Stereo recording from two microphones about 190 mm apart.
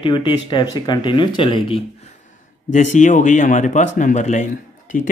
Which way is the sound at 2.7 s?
40° left (ahead or behind).